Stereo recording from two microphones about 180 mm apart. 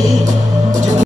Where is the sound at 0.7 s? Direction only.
45° right (ahead or behind).